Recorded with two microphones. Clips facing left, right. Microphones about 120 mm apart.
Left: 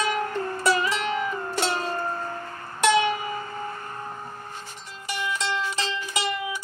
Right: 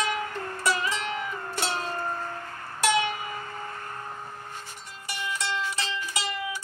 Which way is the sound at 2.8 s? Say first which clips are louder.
Left 4 dB; 20° left (ahead or behind).